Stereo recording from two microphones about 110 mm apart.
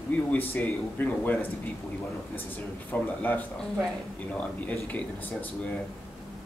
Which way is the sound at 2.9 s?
15° left (ahead or behind).